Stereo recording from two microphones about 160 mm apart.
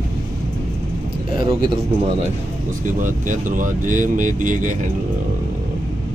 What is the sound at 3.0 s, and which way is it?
Speech, 55° right (ahead or behind).